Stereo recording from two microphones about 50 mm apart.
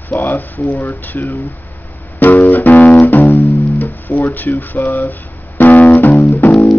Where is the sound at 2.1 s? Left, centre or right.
Left.